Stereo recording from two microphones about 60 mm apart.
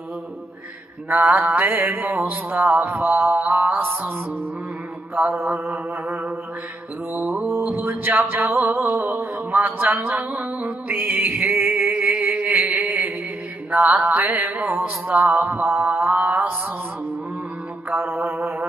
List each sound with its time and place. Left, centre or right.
1.0 s music: right
5.1 s music: right
7.7 s a sound: right
10.0 s music: right
16.2 s mantra: right
17.8 s mantra: right